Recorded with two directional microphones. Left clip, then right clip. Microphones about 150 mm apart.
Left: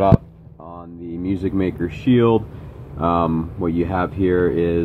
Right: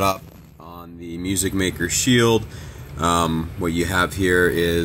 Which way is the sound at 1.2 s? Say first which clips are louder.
Left 1 dB; 15° right (ahead or behind).